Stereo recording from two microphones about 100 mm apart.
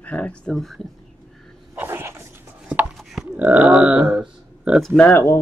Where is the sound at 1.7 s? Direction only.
25° right (ahead or behind).